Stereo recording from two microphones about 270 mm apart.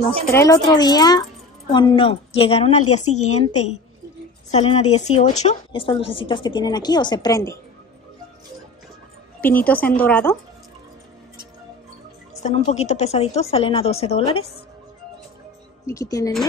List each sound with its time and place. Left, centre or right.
0.0 s a woman's voice: centre
9.4 s a woman's voice: centre
12.4 s a woman's voice: left
15.9 s speech: centre